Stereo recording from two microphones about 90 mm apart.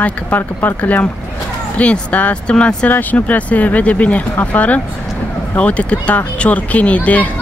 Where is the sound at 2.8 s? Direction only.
20° left (ahead or behind).